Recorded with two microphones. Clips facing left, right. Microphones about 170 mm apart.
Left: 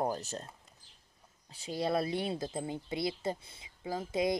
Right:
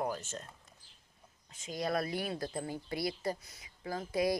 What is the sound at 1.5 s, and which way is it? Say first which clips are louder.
Speech: left 3 dB; 35° left (ahead or behind).